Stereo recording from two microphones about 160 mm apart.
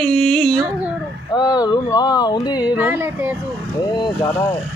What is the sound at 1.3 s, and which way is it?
Speech, 25° left (ahead or behind).